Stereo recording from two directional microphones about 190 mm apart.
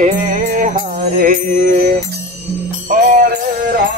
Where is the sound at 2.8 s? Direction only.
50° right (ahead or behind).